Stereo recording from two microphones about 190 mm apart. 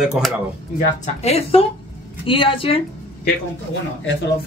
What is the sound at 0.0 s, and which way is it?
Speech, 5° right (ahead or behind).